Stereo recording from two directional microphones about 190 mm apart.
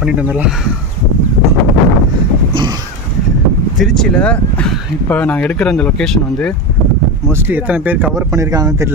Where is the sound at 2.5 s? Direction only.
25° right (ahead or behind).